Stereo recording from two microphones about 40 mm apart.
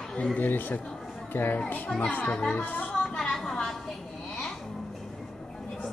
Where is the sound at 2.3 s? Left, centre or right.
Left.